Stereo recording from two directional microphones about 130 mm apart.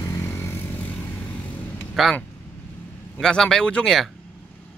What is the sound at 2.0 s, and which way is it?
Speech, centre (ahead or behind).